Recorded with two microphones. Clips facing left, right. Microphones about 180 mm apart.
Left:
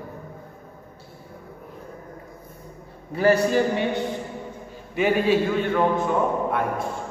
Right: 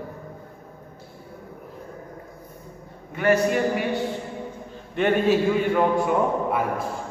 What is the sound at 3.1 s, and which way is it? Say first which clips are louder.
Speech: left 2 dB; 35° left (ahead or behind).